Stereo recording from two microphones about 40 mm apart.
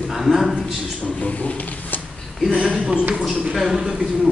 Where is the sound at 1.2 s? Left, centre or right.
Left.